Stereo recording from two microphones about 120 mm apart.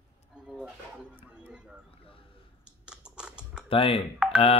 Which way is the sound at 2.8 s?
10° right (ahead or behind).